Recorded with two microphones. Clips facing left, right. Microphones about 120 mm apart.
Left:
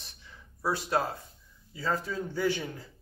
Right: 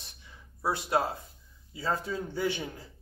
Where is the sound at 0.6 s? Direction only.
20° right (ahead or behind).